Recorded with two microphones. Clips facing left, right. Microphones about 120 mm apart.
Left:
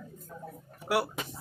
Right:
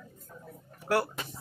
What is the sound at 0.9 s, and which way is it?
Speech, 10° left (ahead or behind).